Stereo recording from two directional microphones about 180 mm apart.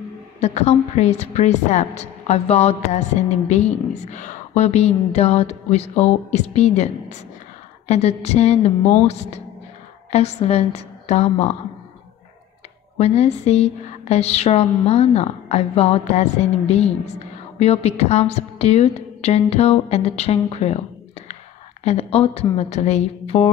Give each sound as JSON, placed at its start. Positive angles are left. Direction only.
{"t": 0.4, "sound": "a woman's voice", "side_deg": 35}
{"t": 12.9, "sound": "a woman's voice", "side_deg": 35}
{"t": 21.8, "sound": "a woman's voice", "side_deg": 35}